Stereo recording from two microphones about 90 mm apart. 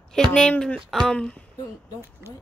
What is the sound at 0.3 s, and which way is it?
Speech, 10° left (ahead or behind).